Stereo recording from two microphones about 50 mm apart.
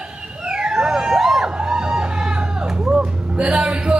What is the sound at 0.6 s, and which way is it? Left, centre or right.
Music, centre.